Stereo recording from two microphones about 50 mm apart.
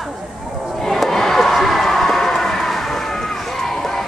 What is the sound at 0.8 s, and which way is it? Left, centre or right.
Crowd, centre.